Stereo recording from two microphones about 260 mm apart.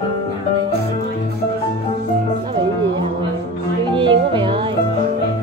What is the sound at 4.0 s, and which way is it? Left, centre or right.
Music, centre.